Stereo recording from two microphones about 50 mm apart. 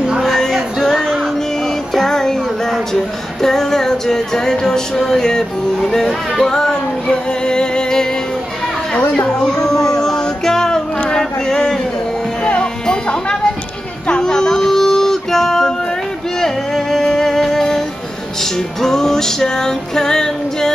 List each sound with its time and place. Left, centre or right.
0.4 s music: centre
3.4 s music: centre
9.1 s music: centre